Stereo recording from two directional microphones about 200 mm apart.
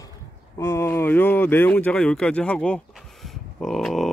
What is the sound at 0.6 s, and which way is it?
Speech, 15° left (ahead or behind).